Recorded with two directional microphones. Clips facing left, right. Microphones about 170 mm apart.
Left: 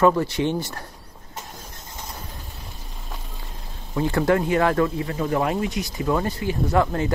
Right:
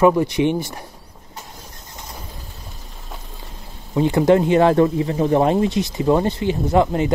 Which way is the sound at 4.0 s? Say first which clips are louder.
Right 6 dB; 20° right (ahead or behind).